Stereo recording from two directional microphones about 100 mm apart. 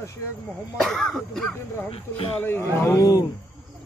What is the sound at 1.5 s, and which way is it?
Speech, 20° left (ahead or behind).